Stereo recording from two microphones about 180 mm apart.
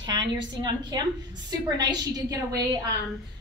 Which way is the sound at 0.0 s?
25° right (ahead or behind).